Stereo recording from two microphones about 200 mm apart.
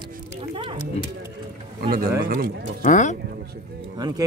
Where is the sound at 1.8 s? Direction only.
50° right (ahead or behind).